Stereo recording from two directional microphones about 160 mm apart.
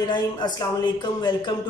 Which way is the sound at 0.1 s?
25° left (ahead or behind).